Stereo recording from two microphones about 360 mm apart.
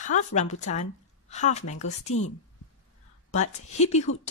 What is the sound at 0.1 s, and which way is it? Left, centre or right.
Speech, centre.